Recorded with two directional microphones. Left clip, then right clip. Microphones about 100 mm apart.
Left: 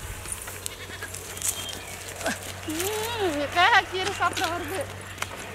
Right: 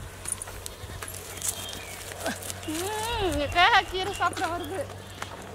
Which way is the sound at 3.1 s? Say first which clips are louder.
Right 1 dB; 30° right (ahead or behind).